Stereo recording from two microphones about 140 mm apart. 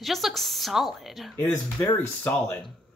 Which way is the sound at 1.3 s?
15° left (ahead or behind).